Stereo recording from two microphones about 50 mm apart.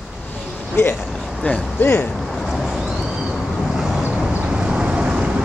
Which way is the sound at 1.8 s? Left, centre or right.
Left.